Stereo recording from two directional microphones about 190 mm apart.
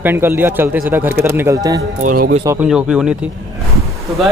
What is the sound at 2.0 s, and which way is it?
Speech, 45° right (ahead or behind).